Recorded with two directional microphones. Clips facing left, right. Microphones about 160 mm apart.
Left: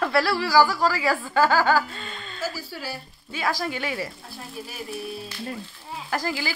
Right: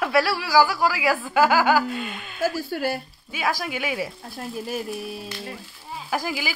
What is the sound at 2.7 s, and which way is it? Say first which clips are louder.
Speech: right 9 dB; 60° right (ahead or behind).